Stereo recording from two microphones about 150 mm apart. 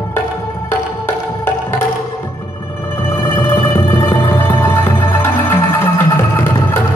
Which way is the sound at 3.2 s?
15° left (ahead or behind).